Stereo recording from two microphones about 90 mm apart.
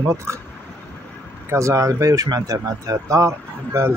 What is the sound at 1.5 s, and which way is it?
Speech, 35° right (ahead or behind).